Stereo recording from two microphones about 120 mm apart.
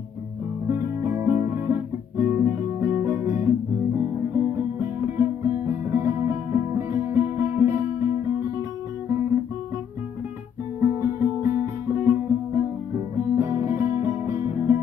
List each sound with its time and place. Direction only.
0.7 s guitar: 25° right (ahead or behind)
4.0 s music: 25° right (ahead or behind)
10.8 s music: 20° right (ahead or behind)